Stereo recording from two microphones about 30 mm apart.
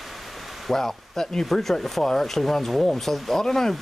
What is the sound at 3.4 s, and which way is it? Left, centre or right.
Speech, centre.